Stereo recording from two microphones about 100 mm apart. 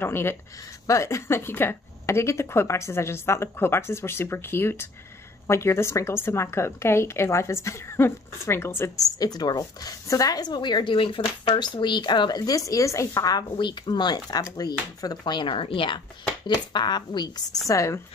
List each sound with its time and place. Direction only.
0.0 s speech: 25° left (ahead or behind)
9.2 s speech: 40° left (ahead or behind); by 16.0 s 60° left (ahead or behind)
16.4 s speech: 45° left (ahead or behind)
17.6 s speech: 30° left (ahead or behind)